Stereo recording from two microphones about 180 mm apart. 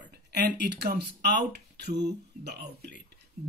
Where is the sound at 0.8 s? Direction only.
60° right (ahead or behind).